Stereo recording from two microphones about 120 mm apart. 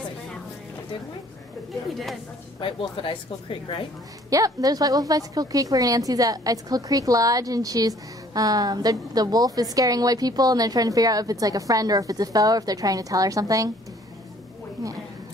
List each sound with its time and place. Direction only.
2.6 s a woman's voice: 45° left (ahead or behind)
4.3 s a woman's voice: 30° right (ahead or behind)